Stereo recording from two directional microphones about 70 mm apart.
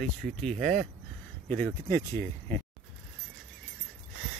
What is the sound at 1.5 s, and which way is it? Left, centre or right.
Speech, left.